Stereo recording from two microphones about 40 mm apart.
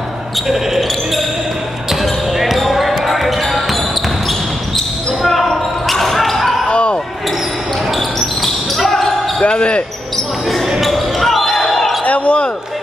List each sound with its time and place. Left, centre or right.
0.5 s basketball bounce: centre
4.7 s basketball bounce: centre
6.7 s basketball bounce: left
8.4 s basketball bounce: centre
9.4 s basketball bounce: left
10.8 s basketball bounce: centre
12.0 s basketball bounce: left